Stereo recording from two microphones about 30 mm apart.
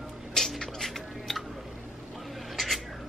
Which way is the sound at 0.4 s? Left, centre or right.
Centre.